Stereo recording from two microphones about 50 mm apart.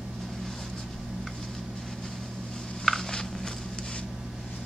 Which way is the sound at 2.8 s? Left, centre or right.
Centre.